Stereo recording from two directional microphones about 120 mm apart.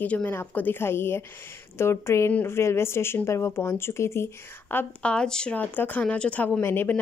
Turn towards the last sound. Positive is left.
turn(degrees=20)  # may be behind; listen again after turning